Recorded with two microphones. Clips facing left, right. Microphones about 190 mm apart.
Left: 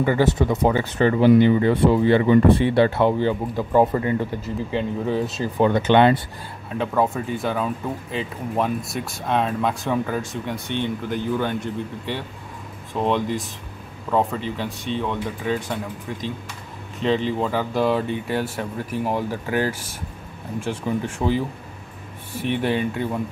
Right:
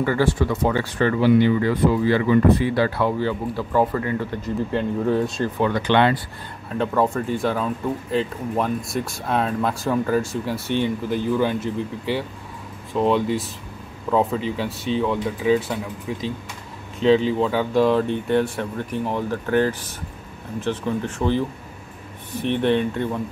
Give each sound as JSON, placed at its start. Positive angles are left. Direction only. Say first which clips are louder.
{"t": 0.0, "sound": "speech", "louder": "left 1 dB", "side_deg": 20}
{"t": 4.4, "sound": "speech", "louder": "right 2 dB", "side_deg": 0}
{"t": 5.6, "sound": "speech", "louder": "left 3 dB", "side_deg": 20}
{"t": 6.8, "sound": "speech", "louder": "right 1 dB", "side_deg": 5}
{"t": 22.4, "sound": "speech", "louder": "right 2 dB", "side_deg": 5}